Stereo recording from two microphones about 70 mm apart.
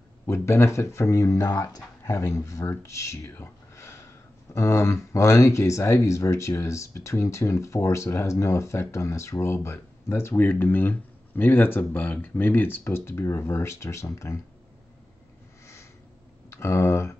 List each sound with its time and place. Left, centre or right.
0.3 s speech: left
3.3 s a sound: left
4.6 s speech: left
10.4 s speech: left
15.6 s a sound: left
16.4 s speech: left